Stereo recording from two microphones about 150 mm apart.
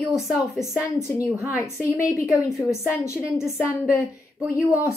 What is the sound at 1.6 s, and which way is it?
A woman's voice, 20° left (ahead or behind).